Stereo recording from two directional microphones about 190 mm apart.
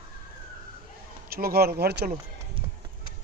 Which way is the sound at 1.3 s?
55° right (ahead or behind).